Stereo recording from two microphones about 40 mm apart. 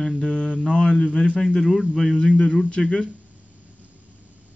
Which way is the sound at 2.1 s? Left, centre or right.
Left.